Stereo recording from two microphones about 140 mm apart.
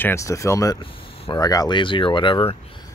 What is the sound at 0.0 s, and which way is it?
Speech, 20° left (ahead or behind).